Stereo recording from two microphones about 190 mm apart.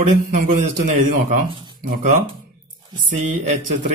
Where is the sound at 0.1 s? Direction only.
40° right (ahead or behind).